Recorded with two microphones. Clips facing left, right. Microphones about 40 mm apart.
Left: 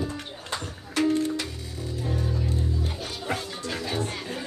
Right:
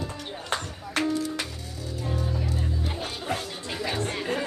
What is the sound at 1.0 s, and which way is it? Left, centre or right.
Music, right.